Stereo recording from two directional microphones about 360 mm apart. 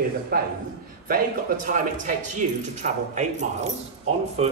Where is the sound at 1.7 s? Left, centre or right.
Right.